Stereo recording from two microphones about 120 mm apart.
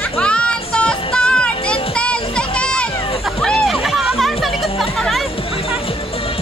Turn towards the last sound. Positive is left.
turn(degrees=0)  # may be behind; listen again after turning